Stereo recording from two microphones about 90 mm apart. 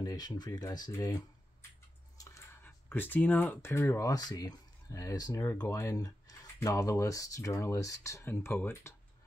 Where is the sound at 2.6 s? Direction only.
20° left (ahead or behind).